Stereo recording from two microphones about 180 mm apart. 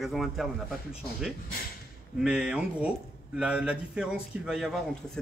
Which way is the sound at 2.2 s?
5° right (ahead or behind).